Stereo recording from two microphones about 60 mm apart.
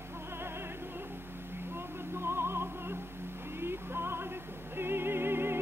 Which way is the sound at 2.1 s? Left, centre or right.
Right.